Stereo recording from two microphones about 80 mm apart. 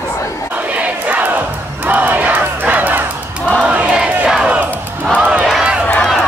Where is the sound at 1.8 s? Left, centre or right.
Right.